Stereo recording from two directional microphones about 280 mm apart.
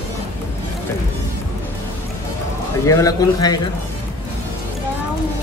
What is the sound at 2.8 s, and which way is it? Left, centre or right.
Speech, centre.